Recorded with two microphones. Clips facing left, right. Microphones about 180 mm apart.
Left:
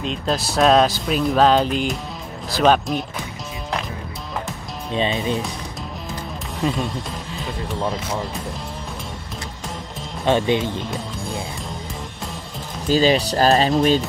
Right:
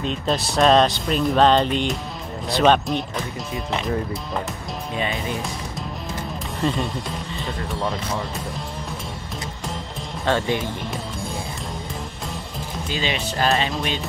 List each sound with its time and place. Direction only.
0.0 s speech: centre (ahead or behind)
4.9 s speech: 25° left (ahead or behind)
6.6 s speech: centre (ahead or behind)
10.2 s speech: 20° left (ahead or behind)
12.8 s speech: 40° left (ahead or behind)